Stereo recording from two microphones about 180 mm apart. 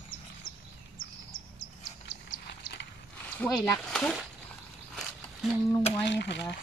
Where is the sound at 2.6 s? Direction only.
50° left (ahead or behind).